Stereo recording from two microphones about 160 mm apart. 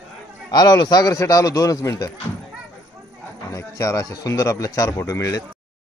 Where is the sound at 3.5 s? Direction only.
20° left (ahead or behind).